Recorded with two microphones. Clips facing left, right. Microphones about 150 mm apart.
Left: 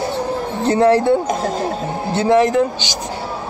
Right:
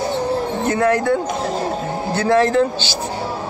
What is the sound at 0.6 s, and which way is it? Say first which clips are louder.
A man's voice: left 5 dB; 30° left (ahead or behind).